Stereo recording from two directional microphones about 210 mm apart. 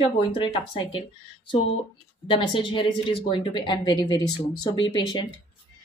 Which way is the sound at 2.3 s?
25° left (ahead or behind).